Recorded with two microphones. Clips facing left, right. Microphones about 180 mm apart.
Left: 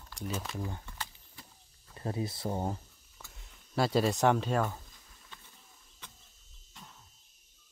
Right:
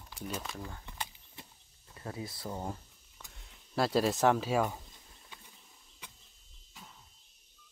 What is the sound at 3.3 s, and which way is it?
Speech, centre (ahead or behind).